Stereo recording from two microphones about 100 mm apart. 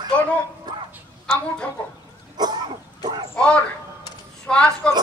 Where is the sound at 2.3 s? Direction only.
45° right (ahead or behind).